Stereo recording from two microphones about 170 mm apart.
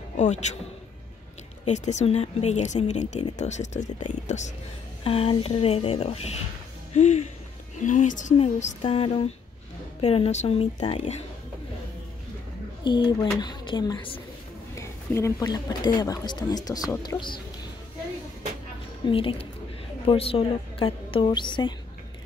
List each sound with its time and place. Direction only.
0.2 s speech: 45° left (ahead or behind)
1.7 s speech: 45° left (ahead or behind)
5.0 s a woman's voice: 35° left (ahead or behind)
6.9 s a sound: 40° left (ahead or behind)
7.8 s a woman's voice: 45° left (ahead or behind)
12.8 s speech: 25° left (ahead or behind)
14.8 s speech: 15° left (ahead or behind)
19.0 s a woman's voice: 30° left (ahead or behind)